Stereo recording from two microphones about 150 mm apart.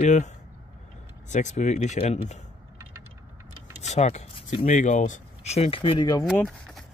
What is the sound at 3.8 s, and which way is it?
Speech, 50° left (ahead or behind).